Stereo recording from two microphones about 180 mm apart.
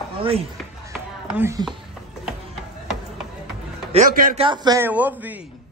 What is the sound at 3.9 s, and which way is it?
Speech, 50° right (ahead or behind).